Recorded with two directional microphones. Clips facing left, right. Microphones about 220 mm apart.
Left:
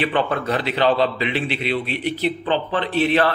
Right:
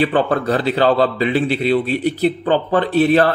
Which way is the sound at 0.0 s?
35° right (ahead or behind).